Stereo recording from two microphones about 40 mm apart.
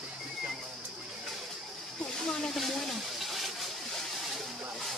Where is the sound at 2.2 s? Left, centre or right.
Centre.